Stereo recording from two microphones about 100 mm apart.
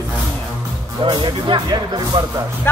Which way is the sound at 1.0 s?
55° right (ahead or behind).